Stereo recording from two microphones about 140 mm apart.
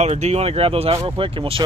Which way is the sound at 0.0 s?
50° right (ahead or behind).